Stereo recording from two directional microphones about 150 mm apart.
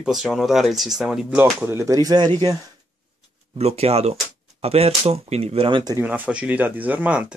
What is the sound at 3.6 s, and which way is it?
Speech, 45° right (ahead or behind).